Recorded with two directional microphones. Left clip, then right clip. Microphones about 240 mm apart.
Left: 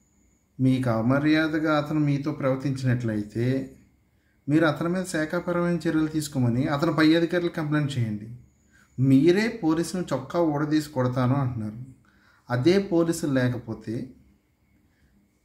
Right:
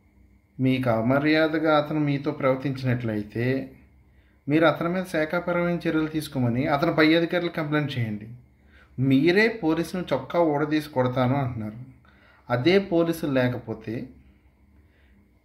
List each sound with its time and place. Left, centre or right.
0.6 s speech: centre